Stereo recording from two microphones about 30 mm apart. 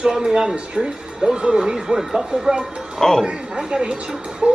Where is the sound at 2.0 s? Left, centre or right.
Centre.